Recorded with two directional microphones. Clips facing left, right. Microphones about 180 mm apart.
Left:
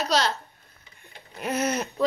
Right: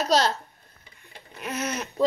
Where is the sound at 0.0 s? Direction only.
45° right (ahead or behind).